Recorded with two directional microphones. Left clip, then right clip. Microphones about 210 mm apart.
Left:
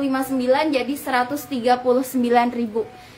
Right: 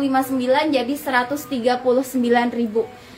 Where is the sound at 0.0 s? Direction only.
15° left (ahead or behind).